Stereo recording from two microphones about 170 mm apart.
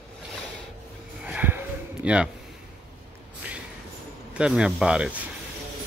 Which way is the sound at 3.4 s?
10° right (ahead or behind).